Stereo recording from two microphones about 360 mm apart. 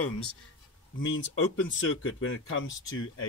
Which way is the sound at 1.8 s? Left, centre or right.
Left.